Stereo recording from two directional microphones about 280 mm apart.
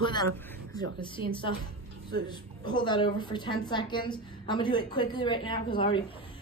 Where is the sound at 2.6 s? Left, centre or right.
Centre.